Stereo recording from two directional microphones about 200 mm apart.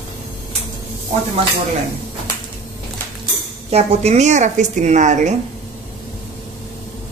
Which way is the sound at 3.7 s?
30° right (ahead or behind).